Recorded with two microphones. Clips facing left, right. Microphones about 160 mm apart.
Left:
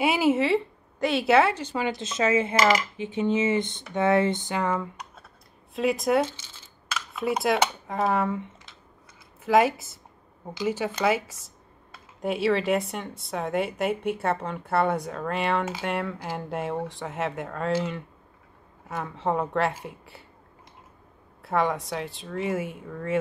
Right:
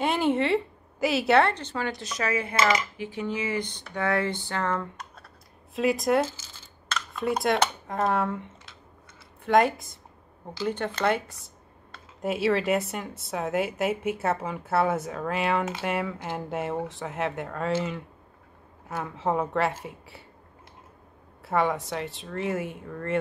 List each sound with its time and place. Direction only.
0.0 s speech: 5° left (ahead or behind)
1.9 s speech: 25° left (ahead or behind); by 20.2 s centre (ahead or behind)
21.4 s speech: centre (ahead or behind)